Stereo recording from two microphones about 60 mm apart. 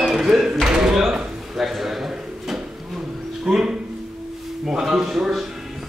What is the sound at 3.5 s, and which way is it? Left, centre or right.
Speech, centre.